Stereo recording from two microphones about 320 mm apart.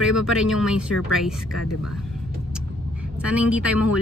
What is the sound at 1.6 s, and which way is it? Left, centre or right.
Speech, left.